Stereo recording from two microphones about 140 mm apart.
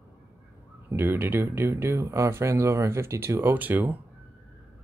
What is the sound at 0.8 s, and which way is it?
Speech, 15° right (ahead or behind).